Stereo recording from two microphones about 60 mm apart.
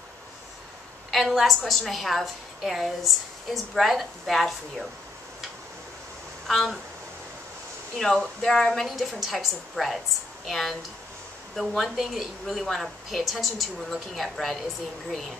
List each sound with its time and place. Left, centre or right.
1.1 s a woman's voice: centre
6.4 s speech: centre
8.0 s a woman's voice: centre